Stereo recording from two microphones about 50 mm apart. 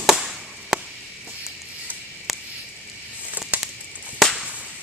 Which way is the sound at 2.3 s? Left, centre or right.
Centre.